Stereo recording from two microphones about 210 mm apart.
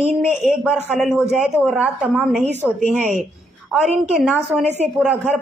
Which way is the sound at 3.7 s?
Centre (ahead or behind).